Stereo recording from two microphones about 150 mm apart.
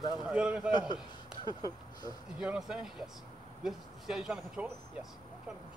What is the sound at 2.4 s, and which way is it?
Speech, 5° right (ahead or behind).